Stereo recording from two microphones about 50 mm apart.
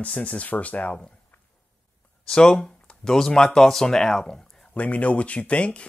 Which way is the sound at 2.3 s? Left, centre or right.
Centre.